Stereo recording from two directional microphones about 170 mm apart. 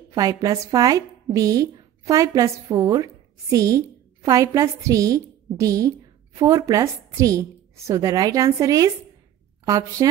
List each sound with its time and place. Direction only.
0.1 s a woman's voice: 20° right (ahead or behind)